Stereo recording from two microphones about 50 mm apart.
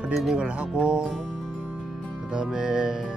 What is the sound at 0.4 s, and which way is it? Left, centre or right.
Speech, right.